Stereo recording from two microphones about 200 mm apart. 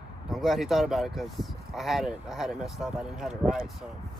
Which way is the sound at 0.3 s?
Centre (ahead or behind).